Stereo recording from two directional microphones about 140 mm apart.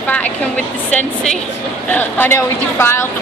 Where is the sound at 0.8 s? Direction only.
5° left (ahead or behind).